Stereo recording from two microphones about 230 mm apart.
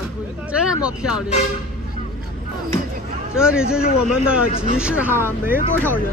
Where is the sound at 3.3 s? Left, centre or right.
Centre.